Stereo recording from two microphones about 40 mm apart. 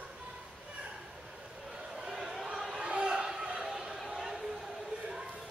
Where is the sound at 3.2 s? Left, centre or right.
Centre.